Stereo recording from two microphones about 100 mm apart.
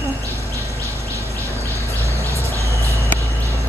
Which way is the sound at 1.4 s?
30° right (ahead or behind).